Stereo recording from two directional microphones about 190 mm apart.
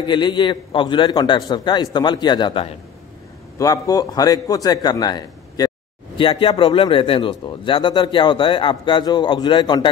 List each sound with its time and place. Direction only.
0.0 s speech: 25° left (ahead or behind)